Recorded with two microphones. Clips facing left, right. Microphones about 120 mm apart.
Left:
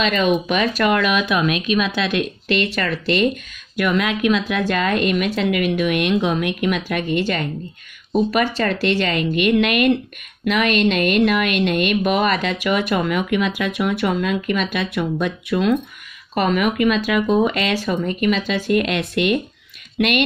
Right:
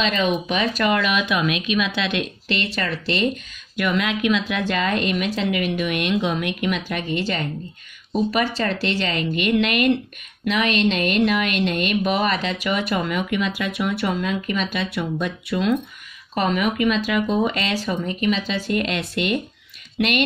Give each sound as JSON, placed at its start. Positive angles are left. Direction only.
{"t": 0.0, "sound": "a woman's voice", "side_deg": 50}